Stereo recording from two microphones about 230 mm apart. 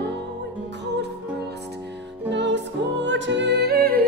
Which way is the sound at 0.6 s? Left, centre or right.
Right.